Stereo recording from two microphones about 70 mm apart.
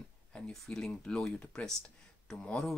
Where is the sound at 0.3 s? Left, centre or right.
Centre.